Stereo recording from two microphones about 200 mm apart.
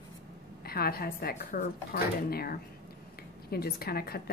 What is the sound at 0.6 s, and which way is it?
A woman's voice, 50° left (ahead or behind).